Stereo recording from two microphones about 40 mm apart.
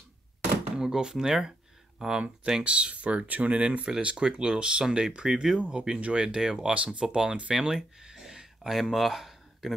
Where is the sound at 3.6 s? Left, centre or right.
Right.